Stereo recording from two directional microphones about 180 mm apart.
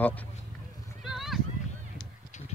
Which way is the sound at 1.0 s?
Centre (ahead or behind).